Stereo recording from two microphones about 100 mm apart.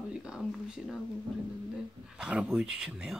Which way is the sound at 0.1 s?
10° right (ahead or behind).